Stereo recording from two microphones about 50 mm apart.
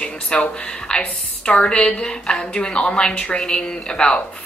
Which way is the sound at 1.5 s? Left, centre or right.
Left.